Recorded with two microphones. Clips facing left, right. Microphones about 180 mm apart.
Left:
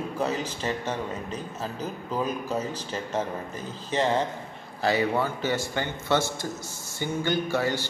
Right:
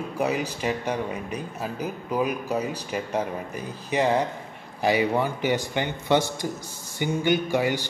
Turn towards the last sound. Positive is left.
turn(degrees=-15)  # may be behind; listen again after turning